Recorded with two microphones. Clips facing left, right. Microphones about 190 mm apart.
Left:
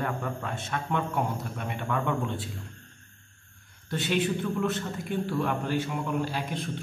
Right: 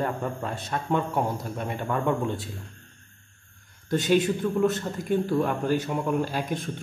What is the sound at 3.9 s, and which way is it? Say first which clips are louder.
A man's voice: right 5 dB; 40° right (ahead or behind).